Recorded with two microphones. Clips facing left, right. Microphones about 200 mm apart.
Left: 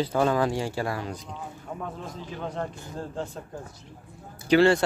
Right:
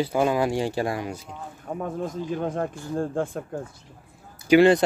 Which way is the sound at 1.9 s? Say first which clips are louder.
Right 9 dB; 50° right (ahead or behind).